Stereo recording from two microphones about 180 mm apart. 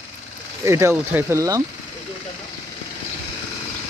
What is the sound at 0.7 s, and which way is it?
Speech, 15° right (ahead or behind).